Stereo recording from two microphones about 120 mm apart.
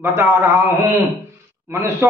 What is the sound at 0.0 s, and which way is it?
A man's voice, 20° right (ahead or behind).